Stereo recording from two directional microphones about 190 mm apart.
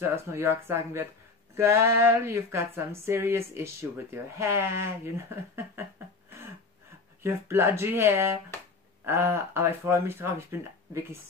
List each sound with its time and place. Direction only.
0.1 s speech: 15° right (ahead or behind)